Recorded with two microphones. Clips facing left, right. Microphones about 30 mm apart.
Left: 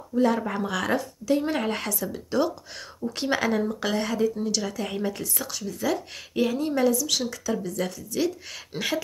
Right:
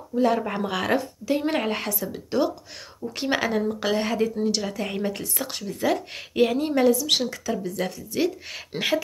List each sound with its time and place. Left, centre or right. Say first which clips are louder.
0.2 s a woman's voice: right 1 dB; centre
4.0 s a woman's voice: right 1 dB; right
5.5 s a woman's voice: right 3 dB; right
7.5 s a woman's voice: right 1 dB; centre